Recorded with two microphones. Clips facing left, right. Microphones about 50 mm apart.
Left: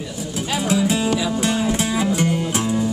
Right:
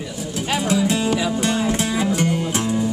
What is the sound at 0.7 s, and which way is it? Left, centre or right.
Music, centre.